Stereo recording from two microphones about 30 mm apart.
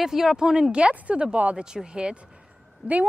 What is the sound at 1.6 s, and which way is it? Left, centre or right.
Speech, right.